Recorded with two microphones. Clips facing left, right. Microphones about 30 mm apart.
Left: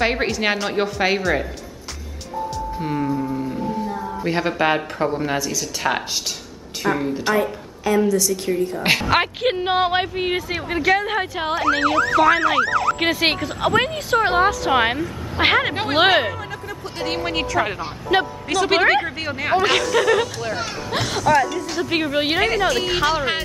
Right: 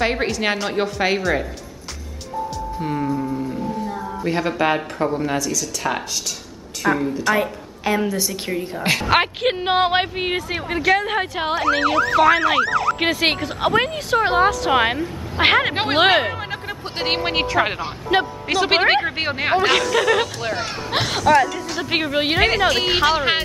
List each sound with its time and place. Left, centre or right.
0.0 s ambulance: centre
2.5 s speech: centre
6.8 s speech: centre
7.3 s a woman's voice: centre
7.8 s speech: right
8.5 s speech: centre
10.7 s ambulance: centre
17.0 s speech: right
18.1 s speech: centre
18.5 s speech: right
19.6 s speech: centre; by 23.4 s right